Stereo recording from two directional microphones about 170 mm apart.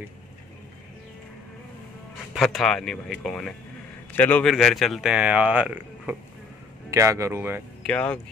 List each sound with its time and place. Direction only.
2.3 s speech: centre (ahead or behind)
7.8 s speech: 5° left (ahead or behind)